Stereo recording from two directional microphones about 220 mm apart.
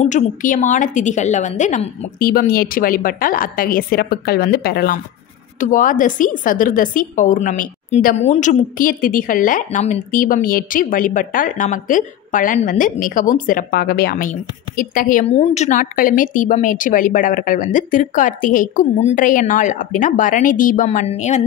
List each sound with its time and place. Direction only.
0.0 s a woman's voice: 35° left (ahead or behind)